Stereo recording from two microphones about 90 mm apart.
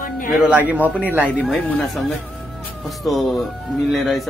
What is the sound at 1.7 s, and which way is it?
A man's voice, centre (ahead or behind).